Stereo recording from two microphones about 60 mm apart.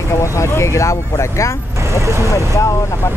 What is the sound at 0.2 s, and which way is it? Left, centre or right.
Speech, left.